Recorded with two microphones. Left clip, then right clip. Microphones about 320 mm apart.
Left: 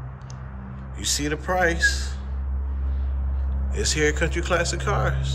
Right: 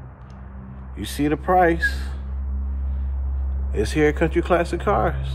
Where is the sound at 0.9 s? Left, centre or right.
Centre.